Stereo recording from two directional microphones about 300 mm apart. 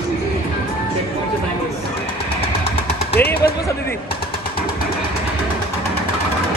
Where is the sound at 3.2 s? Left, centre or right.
Centre.